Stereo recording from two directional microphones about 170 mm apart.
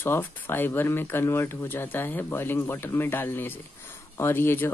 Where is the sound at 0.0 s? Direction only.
15° left (ahead or behind).